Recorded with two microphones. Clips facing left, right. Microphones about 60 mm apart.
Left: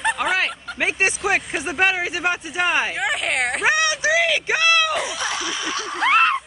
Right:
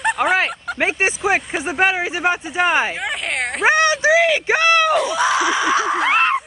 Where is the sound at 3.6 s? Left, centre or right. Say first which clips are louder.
Right 7 dB; right.